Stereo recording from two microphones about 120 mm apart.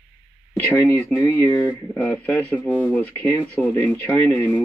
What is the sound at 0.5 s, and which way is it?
Speech, 15° left (ahead or behind).